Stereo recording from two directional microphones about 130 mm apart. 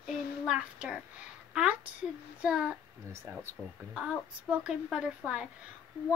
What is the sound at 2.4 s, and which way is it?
Female singing, 10° right (ahead or behind).